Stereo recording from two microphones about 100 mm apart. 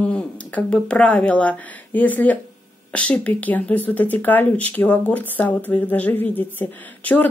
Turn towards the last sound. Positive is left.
turn(degrees=20)  # may be behind; listen again after turning